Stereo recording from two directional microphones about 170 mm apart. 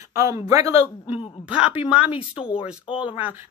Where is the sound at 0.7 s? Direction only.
35° left (ahead or behind).